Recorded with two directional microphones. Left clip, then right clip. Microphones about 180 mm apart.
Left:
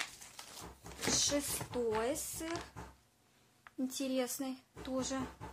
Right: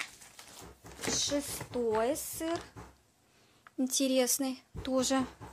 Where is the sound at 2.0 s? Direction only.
40° right (ahead or behind).